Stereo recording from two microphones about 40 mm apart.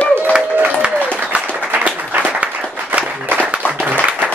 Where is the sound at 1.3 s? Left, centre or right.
Right.